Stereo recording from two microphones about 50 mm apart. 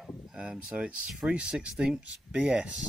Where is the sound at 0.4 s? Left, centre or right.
Centre.